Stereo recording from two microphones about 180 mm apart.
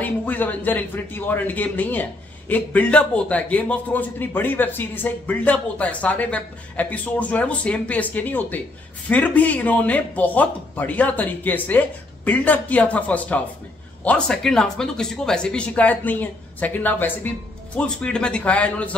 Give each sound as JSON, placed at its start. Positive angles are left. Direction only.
{"t": 0.0, "sound": "a man's voice", "side_deg": 10}